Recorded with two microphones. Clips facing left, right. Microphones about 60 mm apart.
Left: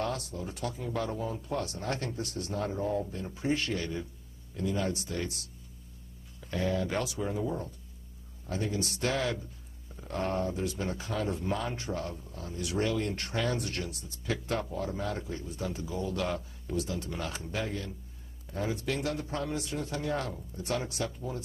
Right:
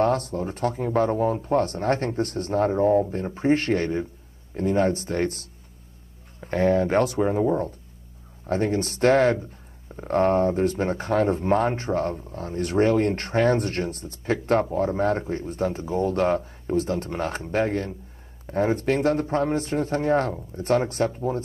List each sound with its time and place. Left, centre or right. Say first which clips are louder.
0.0 s speech: right 12 dB; right
6.4 s a man's voice: right 10 dB; right